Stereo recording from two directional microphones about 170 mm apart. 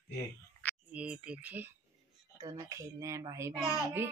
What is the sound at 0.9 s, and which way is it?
A child's voice, 5° right (ahead or behind).